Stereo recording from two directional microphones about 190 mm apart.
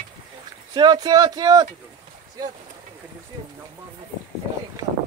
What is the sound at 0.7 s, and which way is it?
Speech, 20° right (ahead or behind).